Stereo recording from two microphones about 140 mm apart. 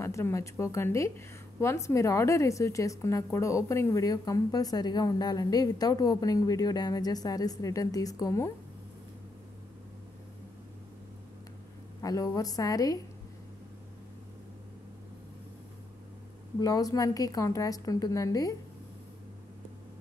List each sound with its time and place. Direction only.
0.0 s a woman's voice: 20° left (ahead or behind)
12.0 s a woman's voice: 25° left (ahead or behind)
16.5 s a woman's voice: 25° left (ahead or behind)